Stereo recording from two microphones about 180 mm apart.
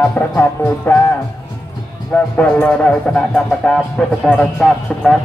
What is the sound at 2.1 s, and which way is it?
Speech, 5° left (ahead or behind).